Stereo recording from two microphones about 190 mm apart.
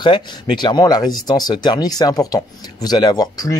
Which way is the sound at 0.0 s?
25° left (ahead or behind).